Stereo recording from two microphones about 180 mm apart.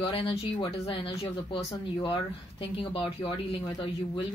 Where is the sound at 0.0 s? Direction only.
30° left (ahead or behind).